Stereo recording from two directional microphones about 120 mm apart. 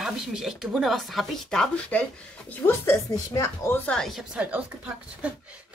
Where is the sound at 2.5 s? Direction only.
20° left (ahead or behind).